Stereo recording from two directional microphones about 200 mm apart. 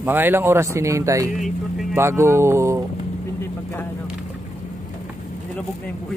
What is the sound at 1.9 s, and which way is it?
Speech, 15° right (ahead or behind).